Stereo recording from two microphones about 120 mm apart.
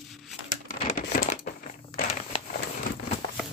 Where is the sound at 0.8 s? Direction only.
85° left.